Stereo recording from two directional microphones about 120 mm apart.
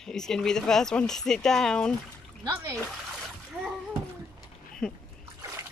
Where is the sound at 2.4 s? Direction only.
25° right (ahead or behind).